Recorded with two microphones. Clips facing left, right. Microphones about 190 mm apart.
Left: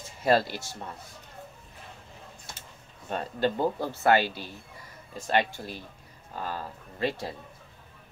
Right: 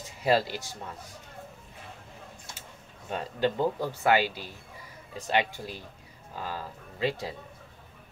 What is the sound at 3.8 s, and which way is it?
Speech, 15° right (ahead or behind).